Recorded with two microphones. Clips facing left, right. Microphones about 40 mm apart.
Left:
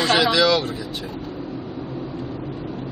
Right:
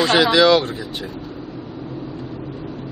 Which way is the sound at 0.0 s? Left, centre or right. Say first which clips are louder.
Right 3 dB; centre.